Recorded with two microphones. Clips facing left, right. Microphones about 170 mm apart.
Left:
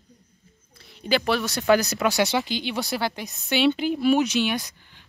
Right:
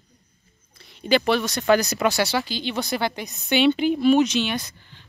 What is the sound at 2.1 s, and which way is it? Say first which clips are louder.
Speech: left 1 dB; 20° left (ahead or behind).